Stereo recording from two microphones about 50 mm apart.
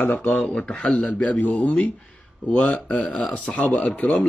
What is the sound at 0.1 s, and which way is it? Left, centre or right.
Speech, left.